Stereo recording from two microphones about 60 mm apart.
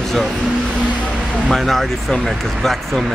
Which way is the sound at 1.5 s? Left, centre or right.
Centre.